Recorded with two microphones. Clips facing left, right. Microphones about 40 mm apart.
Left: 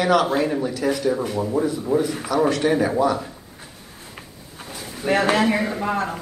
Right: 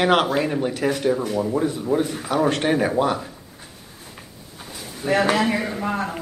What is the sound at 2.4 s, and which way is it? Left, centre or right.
Speech, right.